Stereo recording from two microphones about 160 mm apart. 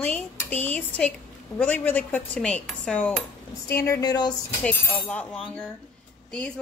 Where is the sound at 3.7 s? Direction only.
20° left (ahead or behind).